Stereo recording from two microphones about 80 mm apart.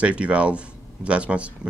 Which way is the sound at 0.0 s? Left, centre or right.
Centre.